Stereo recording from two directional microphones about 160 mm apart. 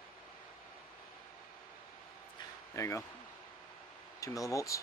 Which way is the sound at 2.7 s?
20° left (ahead or behind).